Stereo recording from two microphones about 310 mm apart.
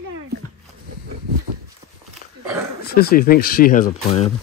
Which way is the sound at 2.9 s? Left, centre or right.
Left.